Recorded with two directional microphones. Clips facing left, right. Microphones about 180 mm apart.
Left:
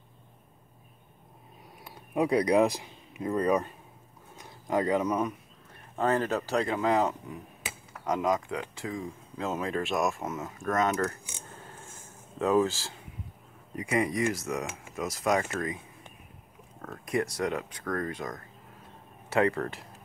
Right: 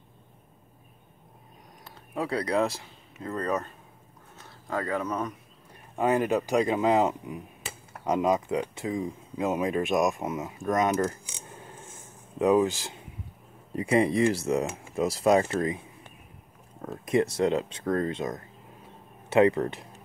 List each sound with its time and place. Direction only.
1.9 s speech: 15° left (ahead or behind)
5.9 s speech: 15° right (ahead or behind)
11.4 s filing: 15° right (ahead or behind)
12.4 s speech: 15° right (ahead or behind)
13.7 s speech: 30° right (ahead or behind)
16.8 s speech: 25° right (ahead or behind)